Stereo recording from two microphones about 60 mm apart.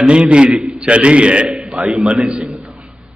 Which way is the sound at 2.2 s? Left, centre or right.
Centre.